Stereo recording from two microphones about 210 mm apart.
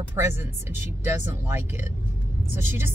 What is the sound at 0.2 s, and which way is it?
Speech, 10° right (ahead or behind).